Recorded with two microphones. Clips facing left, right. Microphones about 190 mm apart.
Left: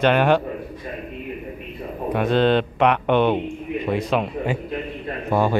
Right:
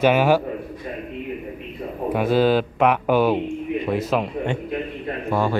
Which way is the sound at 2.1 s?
5° right (ahead or behind).